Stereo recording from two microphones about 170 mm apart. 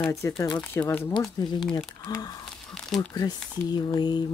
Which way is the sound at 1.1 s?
25° left (ahead or behind).